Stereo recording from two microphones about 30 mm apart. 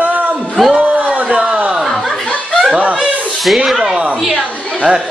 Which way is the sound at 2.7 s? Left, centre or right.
Right.